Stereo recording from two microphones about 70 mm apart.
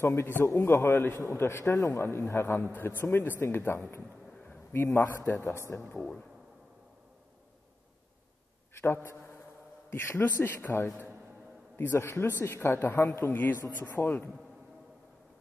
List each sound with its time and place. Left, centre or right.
0.0 s speech: left
1.1 s speech: left
8.7 s a man's voice: left